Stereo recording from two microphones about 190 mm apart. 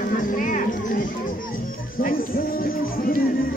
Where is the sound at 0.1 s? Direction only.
45° left (ahead or behind).